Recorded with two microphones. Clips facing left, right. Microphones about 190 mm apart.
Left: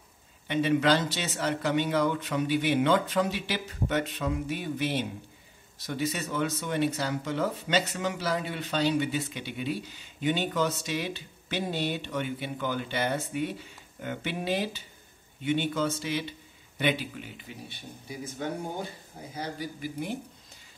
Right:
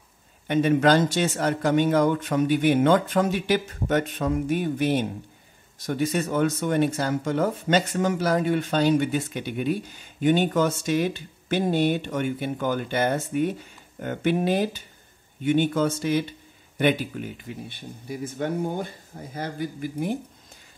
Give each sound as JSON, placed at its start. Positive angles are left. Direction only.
{"t": 0.5, "sound": "speech", "side_deg": -50}